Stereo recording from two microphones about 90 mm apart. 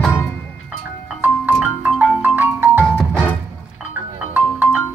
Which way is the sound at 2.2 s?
20° right (ahead or behind).